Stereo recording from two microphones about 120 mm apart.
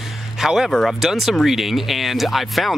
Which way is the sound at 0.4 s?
5° right (ahead or behind).